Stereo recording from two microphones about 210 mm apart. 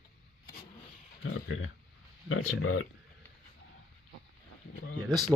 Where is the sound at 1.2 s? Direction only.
70° left (ahead or behind).